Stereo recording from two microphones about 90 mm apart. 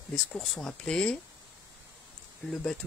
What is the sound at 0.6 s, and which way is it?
Speech, 10° left (ahead or behind).